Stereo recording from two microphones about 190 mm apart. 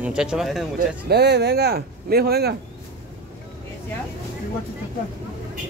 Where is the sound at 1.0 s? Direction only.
60° right (ahead or behind).